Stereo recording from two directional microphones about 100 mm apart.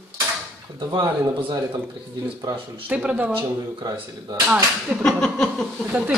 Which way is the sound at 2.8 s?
15° right (ahead or behind).